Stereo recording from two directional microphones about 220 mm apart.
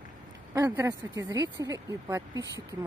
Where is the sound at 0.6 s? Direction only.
15° right (ahead or behind).